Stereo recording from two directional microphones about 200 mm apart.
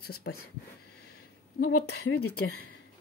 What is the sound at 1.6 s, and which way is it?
Speech, 50° left (ahead or behind).